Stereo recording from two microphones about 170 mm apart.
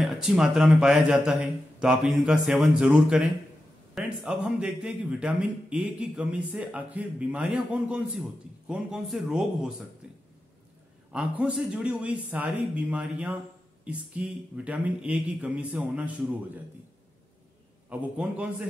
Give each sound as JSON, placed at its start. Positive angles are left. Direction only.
{"t": 0.0, "sound": "a man's voice", "side_deg": 0}
{"t": 11.1, "sound": "a man's voice", "side_deg": -5}
{"t": 17.8, "sound": "a man's voice", "side_deg": -5}